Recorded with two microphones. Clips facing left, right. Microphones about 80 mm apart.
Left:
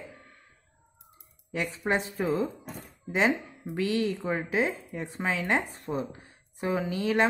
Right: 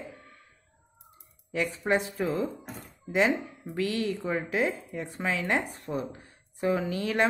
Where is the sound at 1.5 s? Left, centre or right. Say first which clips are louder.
Right 2 dB; left.